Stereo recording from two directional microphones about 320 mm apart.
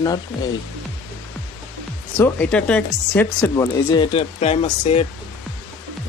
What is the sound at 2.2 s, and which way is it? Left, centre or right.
Speech, centre.